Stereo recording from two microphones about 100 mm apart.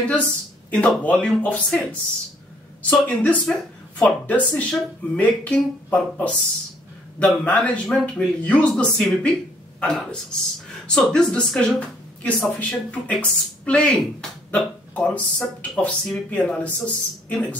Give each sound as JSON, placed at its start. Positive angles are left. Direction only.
{"t": 0.1, "sound": "speech", "side_deg": 10}
{"t": 9.8, "sound": "a sound", "side_deg": 10}
{"t": 11.0, "sound": "speech", "side_deg": 10}